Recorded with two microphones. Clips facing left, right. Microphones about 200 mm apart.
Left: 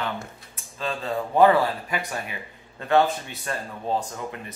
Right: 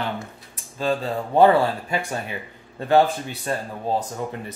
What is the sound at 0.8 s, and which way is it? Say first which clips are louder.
Speech: right 4 dB; 35° right (ahead or behind).